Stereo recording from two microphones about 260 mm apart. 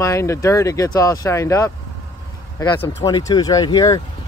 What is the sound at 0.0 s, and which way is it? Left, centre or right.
Speech, centre.